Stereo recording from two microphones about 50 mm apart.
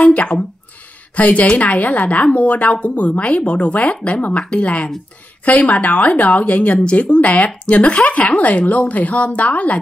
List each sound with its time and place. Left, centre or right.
0.0 s a woman's voice: left